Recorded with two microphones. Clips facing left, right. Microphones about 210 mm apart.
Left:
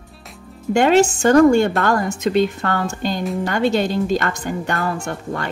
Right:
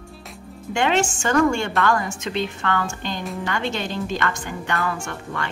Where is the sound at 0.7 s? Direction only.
40° left (ahead or behind).